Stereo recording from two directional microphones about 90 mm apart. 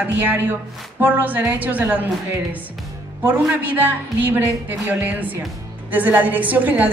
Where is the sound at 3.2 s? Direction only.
20° right (ahead or behind).